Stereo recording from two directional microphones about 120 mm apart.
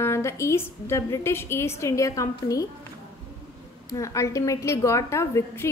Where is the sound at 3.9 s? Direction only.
25° left (ahead or behind).